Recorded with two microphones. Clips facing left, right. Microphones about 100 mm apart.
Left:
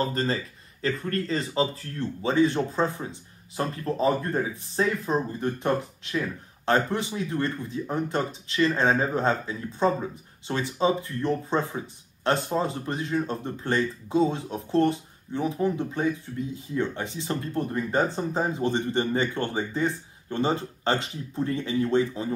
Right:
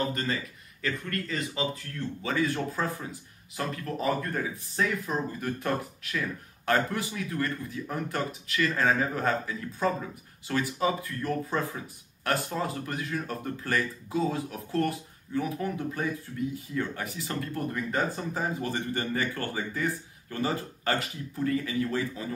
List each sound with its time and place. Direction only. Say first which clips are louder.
0.0 s speech: left 4 dB; 35° left (ahead or behind)